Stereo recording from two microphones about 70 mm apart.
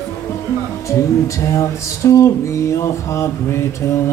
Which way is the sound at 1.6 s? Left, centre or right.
Left.